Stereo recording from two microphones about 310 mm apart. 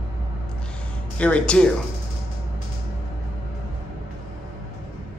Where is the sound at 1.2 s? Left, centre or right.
Centre.